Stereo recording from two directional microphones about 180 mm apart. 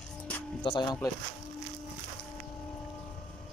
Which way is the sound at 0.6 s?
25° left (ahead or behind).